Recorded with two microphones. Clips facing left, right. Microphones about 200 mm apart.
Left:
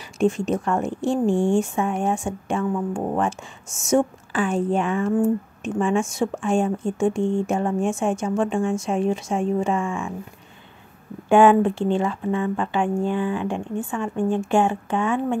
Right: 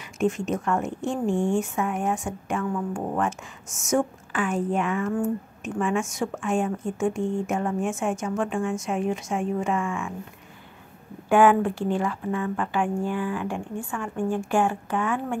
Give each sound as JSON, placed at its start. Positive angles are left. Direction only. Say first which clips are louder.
{"t": 0.2, "sound": "speech", "louder": "left 4 dB", "side_deg": 30}
{"t": 11.2, "sound": "speech", "louder": "left 4 dB", "side_deg": 25}